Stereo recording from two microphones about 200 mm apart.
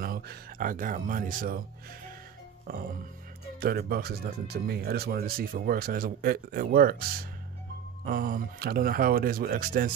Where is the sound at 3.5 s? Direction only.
50° right (ahead or behind).